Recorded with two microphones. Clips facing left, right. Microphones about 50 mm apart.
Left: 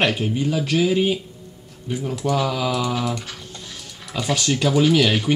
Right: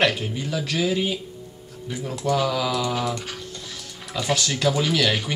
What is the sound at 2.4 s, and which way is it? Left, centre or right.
Speech, centre.